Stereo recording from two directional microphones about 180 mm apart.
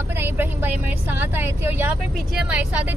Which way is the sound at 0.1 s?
10° right (ahead or behind).